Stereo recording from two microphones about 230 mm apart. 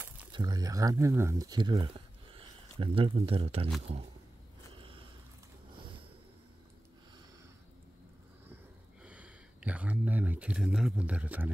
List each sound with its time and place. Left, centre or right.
0.3 s speech: centre
4.7 s a sound: right
9.0 s speech: centre